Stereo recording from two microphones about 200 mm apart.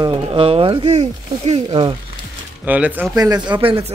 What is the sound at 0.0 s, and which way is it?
Speech, 25° right (ahead or behind).